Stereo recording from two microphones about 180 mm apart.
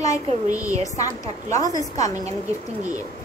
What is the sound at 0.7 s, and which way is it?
A woman's voice, 20° left (ahead or behind).